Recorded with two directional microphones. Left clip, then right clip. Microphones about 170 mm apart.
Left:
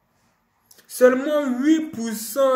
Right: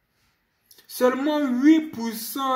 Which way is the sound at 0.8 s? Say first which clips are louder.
Left 5 dB; 45° right (ahead or behind).